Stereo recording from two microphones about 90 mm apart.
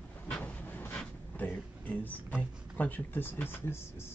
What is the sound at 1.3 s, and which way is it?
Speech, 20° left (ahead or behind).